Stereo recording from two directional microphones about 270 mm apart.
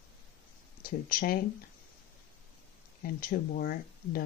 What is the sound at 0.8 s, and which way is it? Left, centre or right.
Speech, left.